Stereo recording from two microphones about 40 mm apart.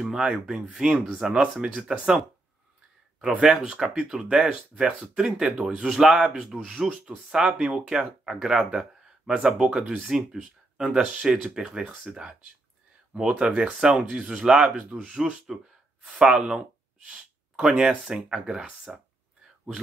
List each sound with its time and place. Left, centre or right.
0.0 s speech: centre
3.2 s speech: right; by 18.9 s centre